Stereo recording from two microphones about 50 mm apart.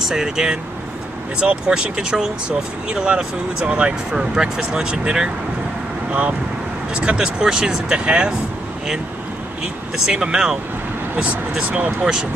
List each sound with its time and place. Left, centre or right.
0.1 s speech: centre
7.0 s speech: centre
9.9 s speech: centre
11.7 s speech: right